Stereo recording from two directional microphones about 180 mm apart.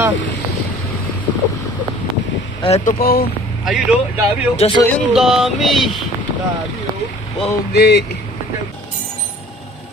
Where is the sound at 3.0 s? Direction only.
55° left (ahead or behind).